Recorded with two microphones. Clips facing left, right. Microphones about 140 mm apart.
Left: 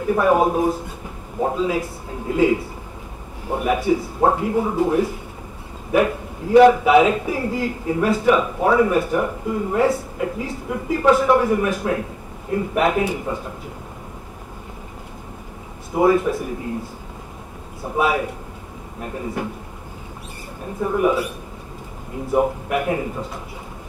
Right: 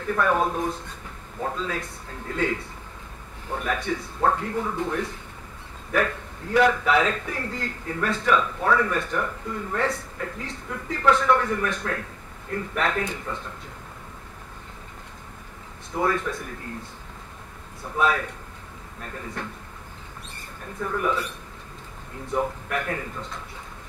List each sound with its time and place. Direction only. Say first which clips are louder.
0.0 s a man's voice: left 6 dB; 15° left (ahead or behind)
15.9 s a man's voice: left 9 dB; 15° left (ahead or behind)
17.9 s a man's voice: left 4 dB; 10° left (ahead or behind)
20.8 s a man's voice: left 7 dB; 15° left (ahead or behind)
22.3 s a man's voice: left 7 dB; 15° left (ahead or behind)